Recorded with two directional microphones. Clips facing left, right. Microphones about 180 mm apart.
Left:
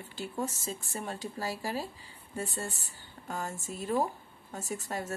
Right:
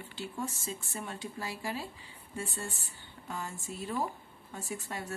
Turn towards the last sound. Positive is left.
turn(degrees=40)  # may be behind; listen again after turning